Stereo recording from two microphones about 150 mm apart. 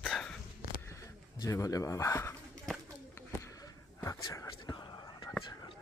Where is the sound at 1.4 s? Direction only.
20° left (ahead or behind).